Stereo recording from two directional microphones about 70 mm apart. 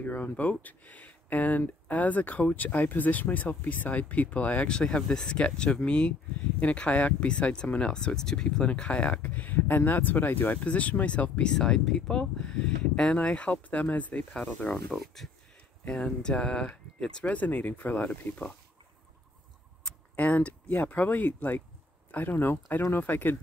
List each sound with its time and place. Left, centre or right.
0.0 s speech: left
11.5 s speech: centre
14.9 s speech: centre; by 18.5 s left
20.2 s speech: left